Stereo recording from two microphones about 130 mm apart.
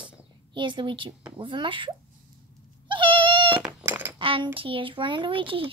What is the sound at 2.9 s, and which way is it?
Cat, 40° right (ahead or behind).